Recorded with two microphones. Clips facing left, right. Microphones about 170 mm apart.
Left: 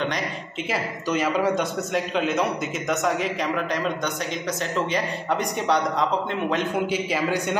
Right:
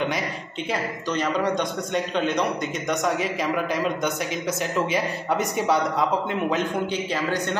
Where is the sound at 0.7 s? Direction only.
5° left (ahead or behind).